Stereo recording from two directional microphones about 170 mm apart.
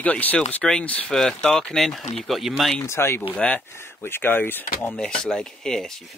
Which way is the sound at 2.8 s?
15° left (ahead or behind).